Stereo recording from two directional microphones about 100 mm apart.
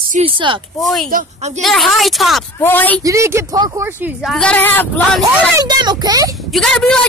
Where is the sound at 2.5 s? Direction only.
20° left (ahead or behind).